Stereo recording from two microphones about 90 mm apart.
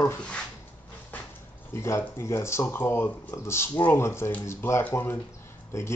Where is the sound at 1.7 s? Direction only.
30° left (ahead or behind).